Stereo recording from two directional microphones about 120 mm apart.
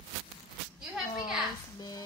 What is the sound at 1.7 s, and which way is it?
Stir, 35° left (ahead or behind).